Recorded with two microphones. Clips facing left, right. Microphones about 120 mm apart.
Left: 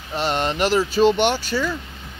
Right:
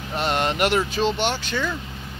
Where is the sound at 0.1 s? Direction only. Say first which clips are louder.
Left 1 dB; centre (ahead or behind).